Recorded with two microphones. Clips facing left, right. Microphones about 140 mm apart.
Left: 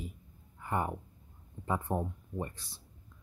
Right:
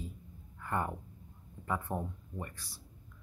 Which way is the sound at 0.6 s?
15° left (ahead or behind).